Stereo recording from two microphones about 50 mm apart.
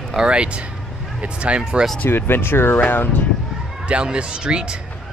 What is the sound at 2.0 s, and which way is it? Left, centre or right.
Speech, left.